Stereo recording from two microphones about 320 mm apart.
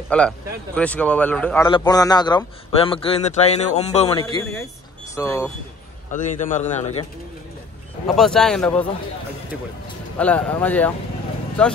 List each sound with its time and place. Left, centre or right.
0.1 s speech: centre
6.1 s speech: left
8.2 s speech: centre
10.1 s speech: centre